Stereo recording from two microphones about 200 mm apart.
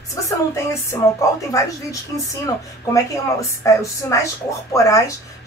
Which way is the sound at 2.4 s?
15° left (ahead or behind).